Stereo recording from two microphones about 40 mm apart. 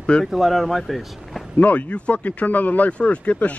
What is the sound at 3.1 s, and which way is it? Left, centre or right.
Speech, left.